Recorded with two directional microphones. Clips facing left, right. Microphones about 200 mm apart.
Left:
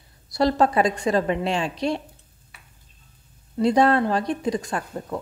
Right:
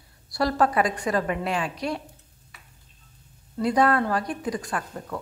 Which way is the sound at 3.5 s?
25° left (ahead or behind).